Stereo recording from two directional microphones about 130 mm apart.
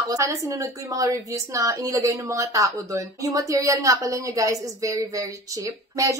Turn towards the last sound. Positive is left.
turn(degrees=-25)  # may be behind; listen again after turning